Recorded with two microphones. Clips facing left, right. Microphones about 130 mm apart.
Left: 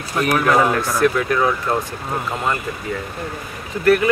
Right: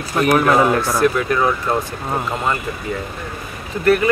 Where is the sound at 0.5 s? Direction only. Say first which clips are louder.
Right 2 dB; 25° right (ahead or behind).